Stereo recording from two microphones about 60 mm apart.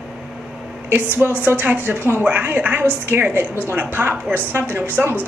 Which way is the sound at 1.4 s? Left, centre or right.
Right.